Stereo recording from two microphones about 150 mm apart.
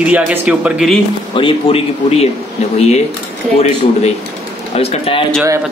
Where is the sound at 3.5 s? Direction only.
45° left (ahead or behind).